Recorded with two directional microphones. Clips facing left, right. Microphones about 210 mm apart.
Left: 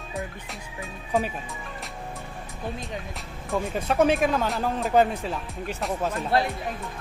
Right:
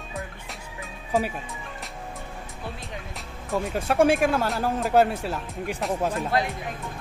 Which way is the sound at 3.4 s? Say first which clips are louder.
Right 1 dB; 5° right (ahead or behind).